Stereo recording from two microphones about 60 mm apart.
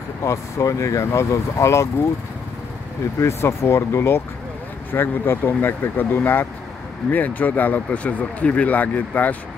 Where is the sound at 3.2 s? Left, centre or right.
Left.